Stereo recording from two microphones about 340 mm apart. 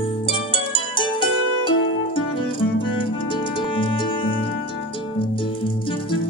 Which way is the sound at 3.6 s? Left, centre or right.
Centre.